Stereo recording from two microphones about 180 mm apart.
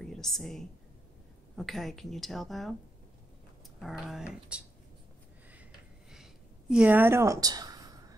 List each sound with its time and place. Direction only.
0.0 s a woman's voice: 5° left (ahead or behind)
3.8 s a woman's voice: 5° right (ahead or behind)
6.1 s a sound: 5° right (ahead or behind); by 8.2 s 20° right (ahead or behind)